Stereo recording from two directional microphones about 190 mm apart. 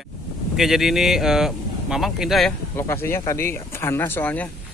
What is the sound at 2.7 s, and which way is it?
Speech, 15° left (ahead or behind).